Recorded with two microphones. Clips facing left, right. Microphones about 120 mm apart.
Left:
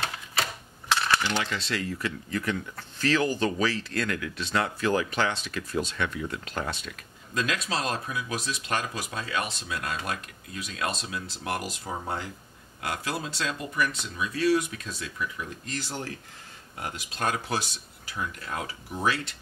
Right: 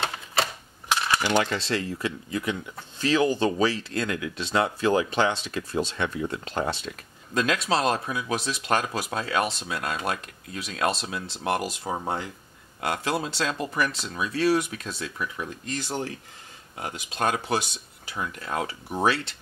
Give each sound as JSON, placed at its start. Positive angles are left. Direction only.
{"t": 0.0, "sound": "typewriter", "side_deg": -30}
{"t": 0.8, "sound": "coin", "side_deg": -15}
{"t": 1.3, "sound": "speech", "side_deg": -40}